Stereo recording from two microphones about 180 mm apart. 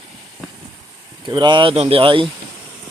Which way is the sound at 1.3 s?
25° right (ahead or behind).